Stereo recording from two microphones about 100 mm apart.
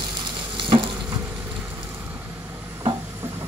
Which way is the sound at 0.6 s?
55° right (ahead or behind).